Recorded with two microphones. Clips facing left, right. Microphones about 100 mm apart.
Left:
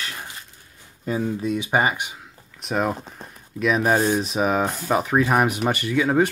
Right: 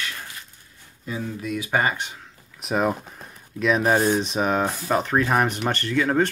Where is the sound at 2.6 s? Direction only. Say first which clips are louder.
Right 1 dB; centre (ahead or behind).